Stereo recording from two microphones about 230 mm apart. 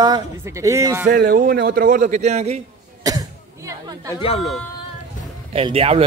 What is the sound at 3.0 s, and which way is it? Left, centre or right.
Cough, centre.